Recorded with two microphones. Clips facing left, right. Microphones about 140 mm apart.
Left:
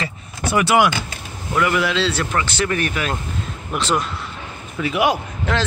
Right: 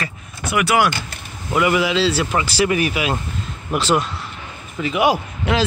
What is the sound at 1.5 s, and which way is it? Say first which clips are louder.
Speech: right 2 dB; 10° right (ahead or behind).